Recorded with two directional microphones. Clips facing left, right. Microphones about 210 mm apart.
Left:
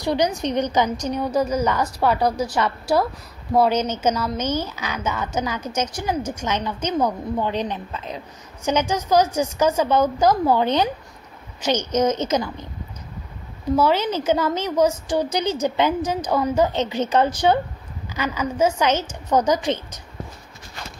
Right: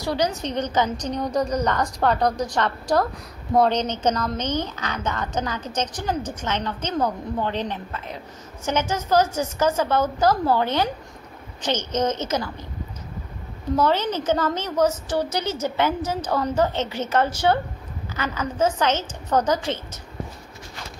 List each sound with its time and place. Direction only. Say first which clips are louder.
0.0 s a woman's voice: left 3 dB; 15° left (ahead or behind)
13.7 s a woman's voice: left 2 dB; 10° left (ahead or behind)